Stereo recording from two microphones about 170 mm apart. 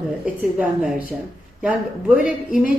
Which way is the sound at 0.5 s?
10° right (ahead or behind).